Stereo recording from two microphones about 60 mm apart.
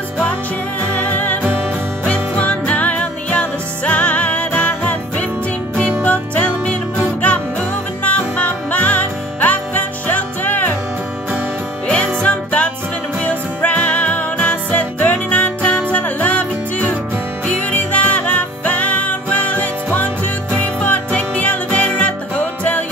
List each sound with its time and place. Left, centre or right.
0.9 s music: left
8.0 s music: left
12.2 s music: left